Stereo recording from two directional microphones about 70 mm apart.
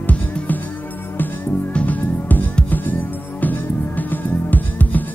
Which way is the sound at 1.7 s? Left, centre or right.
Centre.